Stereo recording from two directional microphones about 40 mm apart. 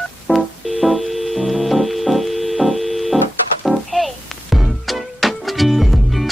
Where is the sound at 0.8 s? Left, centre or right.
Centre.